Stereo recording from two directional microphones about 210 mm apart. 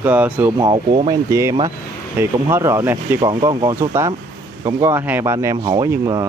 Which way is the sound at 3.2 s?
20° right (ahead or behind).